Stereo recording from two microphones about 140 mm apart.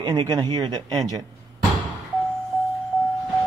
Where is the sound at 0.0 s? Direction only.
30° right (ahead or behind).